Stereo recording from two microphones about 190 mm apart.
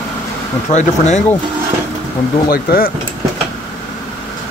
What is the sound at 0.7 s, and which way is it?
Speech, 35° left (ahead or behind).